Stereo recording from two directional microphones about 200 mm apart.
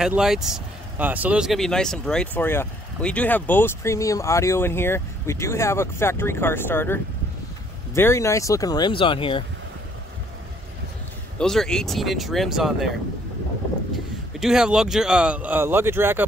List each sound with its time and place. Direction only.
0.0 s speech: 5° right (ahead or behind); by 9.4 s 25° left (ahead or behind)
11.3 s speech: 5° left (ahead or behind)
14.4 s speech: 5° right (ahead or behind)